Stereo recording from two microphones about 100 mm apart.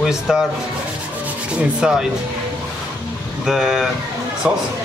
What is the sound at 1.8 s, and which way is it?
Speech, 5° right (ahead or behind).